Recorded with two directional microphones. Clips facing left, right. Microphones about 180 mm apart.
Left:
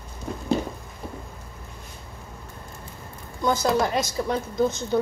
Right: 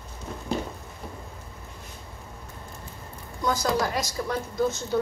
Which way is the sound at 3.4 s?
25° left (ahead or behind).